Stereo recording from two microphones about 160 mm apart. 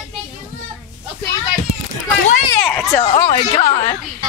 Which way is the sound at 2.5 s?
10° left (ahead or behind).